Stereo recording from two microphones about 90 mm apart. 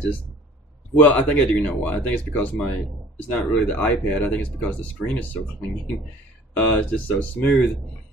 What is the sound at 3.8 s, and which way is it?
Speech, 20° left (ahead or behind).